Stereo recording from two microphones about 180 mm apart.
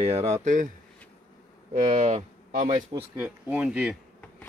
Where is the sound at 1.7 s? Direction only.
45° right (ahead or behind).